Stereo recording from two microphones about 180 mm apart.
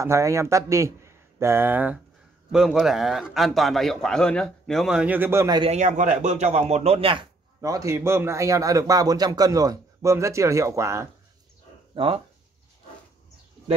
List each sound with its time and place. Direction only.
0.0 s a man's voice: 15° right (ahead or behind)
5.6 s a man's voice: 40° right (ahead or behind); by 11.1 s 15° right (ahead or behind)
11.9 s speech: 30° right (ahead or behind)